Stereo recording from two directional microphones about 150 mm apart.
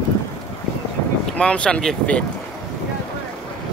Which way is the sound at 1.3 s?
5° left (ahead or behind).